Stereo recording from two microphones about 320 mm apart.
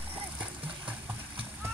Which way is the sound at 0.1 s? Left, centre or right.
Centre.